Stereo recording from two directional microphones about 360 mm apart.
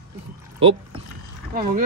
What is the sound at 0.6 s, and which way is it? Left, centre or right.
A man's voice, centre.